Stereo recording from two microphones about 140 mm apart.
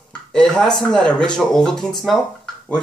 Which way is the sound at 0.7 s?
5° left (ahead or behind).